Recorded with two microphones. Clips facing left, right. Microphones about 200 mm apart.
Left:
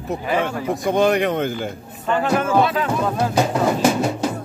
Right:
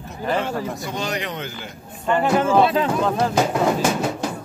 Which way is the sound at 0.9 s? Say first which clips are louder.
Left 14 dB; 55° left (ahead or behind).